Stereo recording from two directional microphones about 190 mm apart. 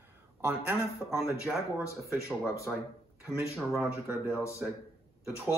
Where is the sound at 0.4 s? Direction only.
10° right (ahead or behind).